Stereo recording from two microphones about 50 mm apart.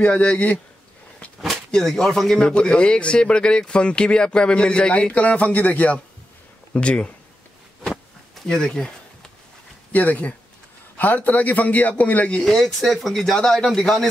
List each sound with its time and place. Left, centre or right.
0.0 s speech: left
1.7 s speech: centre
2.3 s speech: left
8.4 s a sound: centre
9.9 s a man's voice: left
12.4 s a man's voice: centre